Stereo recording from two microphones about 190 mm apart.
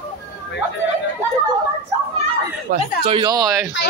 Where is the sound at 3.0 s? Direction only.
25° right (ahead or behind).